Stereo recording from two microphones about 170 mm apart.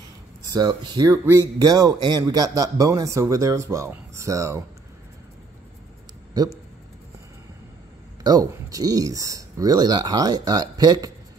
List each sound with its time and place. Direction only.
0.5 s speech: 25° right (ahead or behind)
8.2 s speech: 20° right (ahead or behind)